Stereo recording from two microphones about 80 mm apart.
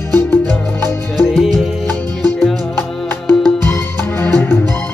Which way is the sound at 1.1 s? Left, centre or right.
Centre.